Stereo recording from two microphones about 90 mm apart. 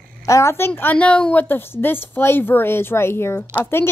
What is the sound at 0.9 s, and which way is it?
A woman's voice, 15° left (ahead or behind).